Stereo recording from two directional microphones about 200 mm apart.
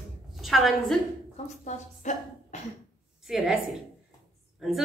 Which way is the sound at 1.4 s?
40° left (ahead or behind).